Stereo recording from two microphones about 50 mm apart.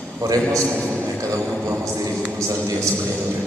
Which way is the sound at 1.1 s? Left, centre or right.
Right.